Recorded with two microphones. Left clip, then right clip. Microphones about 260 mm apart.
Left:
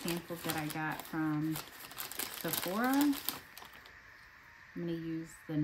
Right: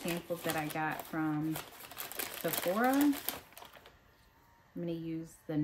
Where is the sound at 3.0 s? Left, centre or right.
Centre.